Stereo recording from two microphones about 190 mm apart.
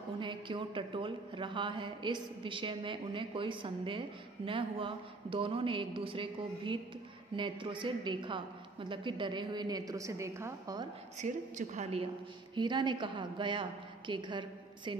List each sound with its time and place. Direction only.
0.2 s a woman's voice: 25° right (ahead or behind)
11.1 s a woman's voice: 40° right (ahead or behind)
12.5 s a woman's voice: 25° right (ahead or behind)